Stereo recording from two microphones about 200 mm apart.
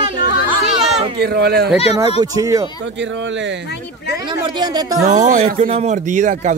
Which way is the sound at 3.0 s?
65° right (ahead or behind).